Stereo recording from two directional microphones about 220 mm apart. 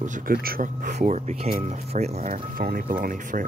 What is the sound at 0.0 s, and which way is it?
Speech, 40° right (ahead or behind).